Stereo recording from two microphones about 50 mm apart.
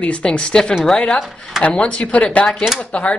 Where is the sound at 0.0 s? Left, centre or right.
Left.